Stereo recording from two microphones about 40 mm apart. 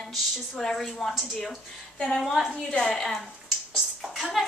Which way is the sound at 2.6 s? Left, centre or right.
Centre.